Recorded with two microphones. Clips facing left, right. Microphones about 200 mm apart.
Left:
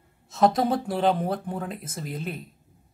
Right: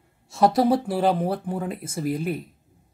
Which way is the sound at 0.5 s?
5° right (ahead or behind).